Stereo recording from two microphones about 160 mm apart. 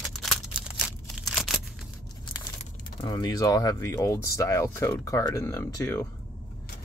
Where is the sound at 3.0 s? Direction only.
25° left (ahead or behind).